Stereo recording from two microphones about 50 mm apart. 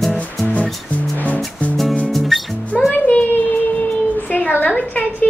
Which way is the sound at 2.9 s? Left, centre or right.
Left.